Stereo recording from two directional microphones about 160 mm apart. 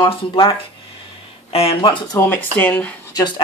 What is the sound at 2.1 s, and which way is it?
Speech, 15° left (ahead or behind).